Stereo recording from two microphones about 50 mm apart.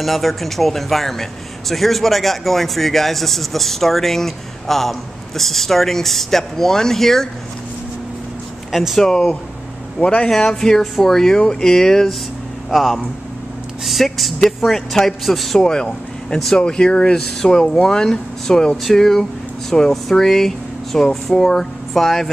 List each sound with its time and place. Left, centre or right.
0.0 s speech: centre
8.7 s a man's voice: centre
15.6 s speech: centre